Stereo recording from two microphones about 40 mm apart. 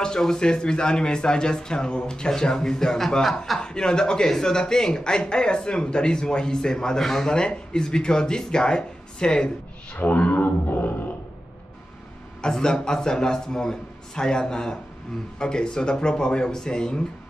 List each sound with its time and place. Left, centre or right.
0.0 s speech: centre
3.5 s speech: centre
7.1 s speech: centre
7.3 s speech: left
9.9 s speech: left
12.4 s speech: centre